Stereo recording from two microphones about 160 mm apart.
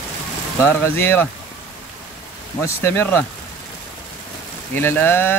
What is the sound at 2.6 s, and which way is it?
Speech, 15° left (ahead or behind).